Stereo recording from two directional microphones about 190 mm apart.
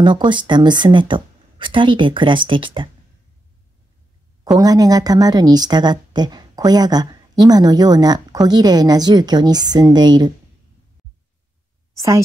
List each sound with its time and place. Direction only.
0.0 s a woman's voice: 25° right (ahead or behind)
4.6 s a woman's voice: 20° right (ahead or behind)